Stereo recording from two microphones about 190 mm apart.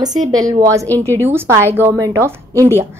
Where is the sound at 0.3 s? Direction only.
20° right (ahead or behind).